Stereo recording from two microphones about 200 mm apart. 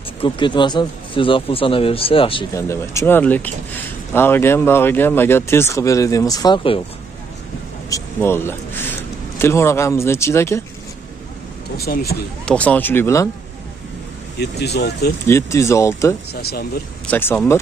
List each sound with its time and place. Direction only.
0.2 s speech: 25° left (ahead or behind)
2.5 s speech: 15° left (ahead or behind)
7.9 s speech: 10° left (ahead or behind)
11.8 s speech: 50° left (ahead or behind)
12.4 s speech: 5° left (ahead or behind)
14.4 s speech: 55° left (ahead or behind)
15.2 s speech: 15° left (ahead or behind)
16.3 s speech: 50° left (ahead or behind)
17.1 s speech: 10° left (ahead or behind)